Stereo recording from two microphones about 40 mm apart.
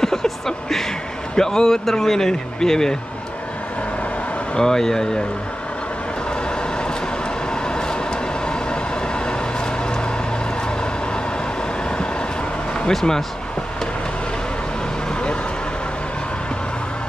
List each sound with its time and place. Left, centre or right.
0.0 s a sound: centre
1.3 s speech: centre
4.6 s speech: centre
7.6 s vehicle: left